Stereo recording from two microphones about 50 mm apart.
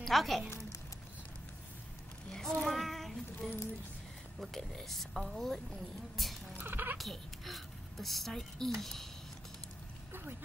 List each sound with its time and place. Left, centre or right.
0.0 s speech: centre
2.3 s child singing: centre
3.4 s speech: centre
6.6 s music: right
7.0 s a child's voice: centre